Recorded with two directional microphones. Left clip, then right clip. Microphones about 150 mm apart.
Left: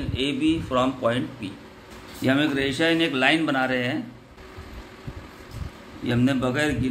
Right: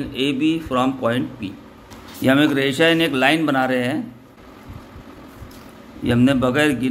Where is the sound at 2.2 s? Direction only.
40° right (ahead or behind).